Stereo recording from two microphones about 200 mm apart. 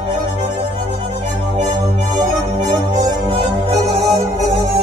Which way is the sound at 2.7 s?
20° right (ahead or behind).